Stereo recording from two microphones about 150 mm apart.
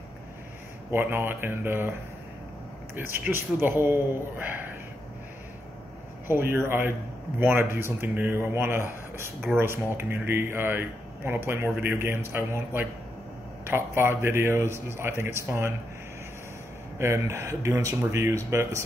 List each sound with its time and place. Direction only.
0.9 s speech: 15° right (ahead or behind)
6.2 s speech: 15° right (ahead or behind)
17.0 s speech: 20° right (ahead or behind)